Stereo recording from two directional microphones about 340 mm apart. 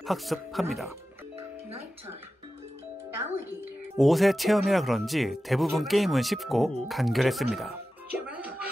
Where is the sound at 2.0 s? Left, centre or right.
Centre.